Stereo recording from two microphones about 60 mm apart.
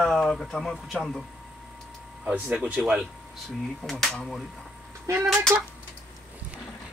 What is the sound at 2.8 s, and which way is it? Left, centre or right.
Speech, right.